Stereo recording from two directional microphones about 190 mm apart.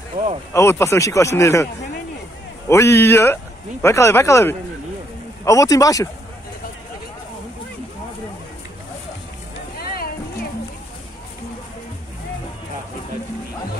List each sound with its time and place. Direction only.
0.2 s speech: 45° right (ahead or behind)
0.5 s speech: 15° left (ahead or behind)
2.7 s speech: 15° left (ahead or behind)
9.8 s a sound: 50° left (ahead or behind)